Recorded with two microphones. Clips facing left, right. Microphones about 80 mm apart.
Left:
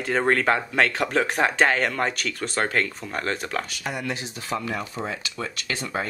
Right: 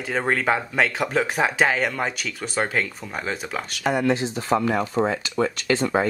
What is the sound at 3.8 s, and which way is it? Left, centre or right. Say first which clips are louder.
Speech: right 9 dB; right.